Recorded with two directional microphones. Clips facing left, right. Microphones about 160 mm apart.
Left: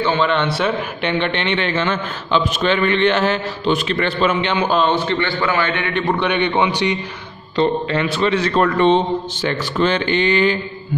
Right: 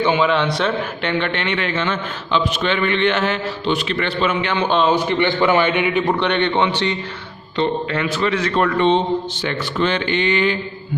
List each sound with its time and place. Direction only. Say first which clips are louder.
0.0 s a man's voice: right 1 dB; 10° right (ahead or behind)
0.3 s a man's voice: even; centre (ahead or behind)
1.0 s a man's voice: left 2 dB; 20° left (ahead or behind)
1.8 s a man's voice: left 2 dB; 40° left (ahead or behind)
4.6 s a man's voice: right 2 dB; centre (ahead or behind)
4.9 s a man's voice: right 2 dB; 15° right (ahead or behind)
6.1 s a man's voice: even; 10° left (ahead or behind)
7.5 s a man's voice: left 3 dB; 30° left (ahead or behind)
8.8 s a man's voice: left 1 dB; 45° left (ahead or behind)